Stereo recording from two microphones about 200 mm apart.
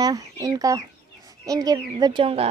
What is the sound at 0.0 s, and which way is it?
Speech, 20° right (ahead or behind).